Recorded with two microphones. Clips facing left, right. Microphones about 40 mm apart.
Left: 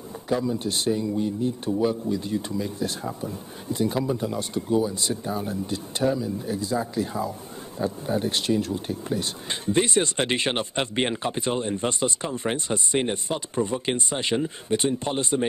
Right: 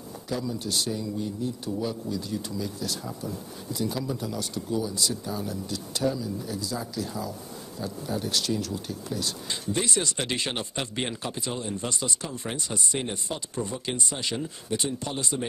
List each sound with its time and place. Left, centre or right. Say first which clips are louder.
0.3 s speech: left 5 dB; left